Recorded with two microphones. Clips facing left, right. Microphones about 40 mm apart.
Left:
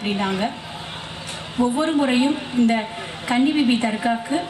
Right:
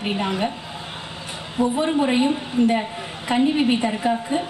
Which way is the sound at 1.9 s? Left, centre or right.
Centre.